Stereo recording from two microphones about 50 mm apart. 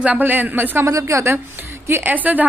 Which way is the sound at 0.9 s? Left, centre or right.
Right.